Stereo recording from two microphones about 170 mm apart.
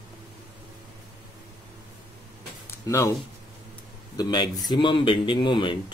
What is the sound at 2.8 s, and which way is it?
Speech, 20° left (ahead or behind).